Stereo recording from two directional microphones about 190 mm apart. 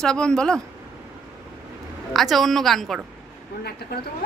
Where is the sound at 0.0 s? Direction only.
5° left (ahead or behind).